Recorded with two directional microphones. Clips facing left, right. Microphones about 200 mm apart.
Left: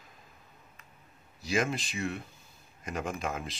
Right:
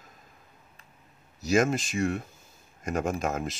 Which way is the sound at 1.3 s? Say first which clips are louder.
Right 6 dB; 45° right (ahead or behind).